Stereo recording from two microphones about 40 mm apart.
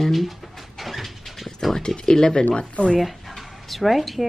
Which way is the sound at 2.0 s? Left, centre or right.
Left.